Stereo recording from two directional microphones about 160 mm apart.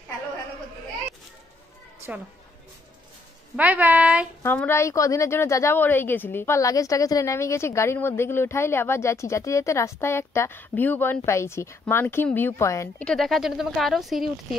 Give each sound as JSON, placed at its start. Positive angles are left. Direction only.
{"t": 3.5, "sound": "a woman's voice", "side_deg": -10}
{"t": 4.4, "sound": "a woman's voice", "side_deg": 15}
{"t": 13.0, "sound": "speech", "side_deg": 0}